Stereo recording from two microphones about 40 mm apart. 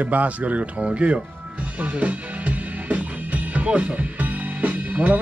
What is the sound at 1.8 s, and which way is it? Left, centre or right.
Music, right.